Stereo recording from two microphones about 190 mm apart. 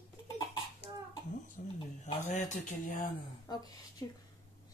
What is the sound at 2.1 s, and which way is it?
Speech, 40° left (ahead or behind).